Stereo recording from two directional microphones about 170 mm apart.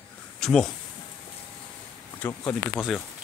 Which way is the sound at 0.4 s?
5° left (ahead or behind).